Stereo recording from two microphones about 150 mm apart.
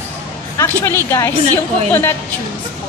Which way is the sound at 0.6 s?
20° left (ahead or behind).